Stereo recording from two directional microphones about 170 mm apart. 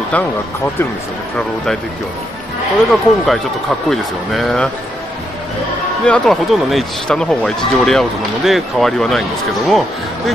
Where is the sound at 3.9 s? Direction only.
Centre (ahead or behind).